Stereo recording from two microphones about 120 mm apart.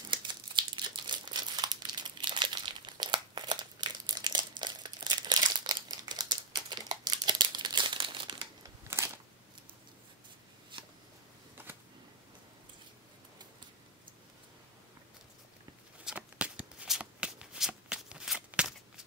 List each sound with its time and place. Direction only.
0.1 s crumpling: 40° right (ahead or behind)
8.8 s a sound: 20° right (ahead or behind)
16.0 s shuffling cards: 10° right (ahead or behind)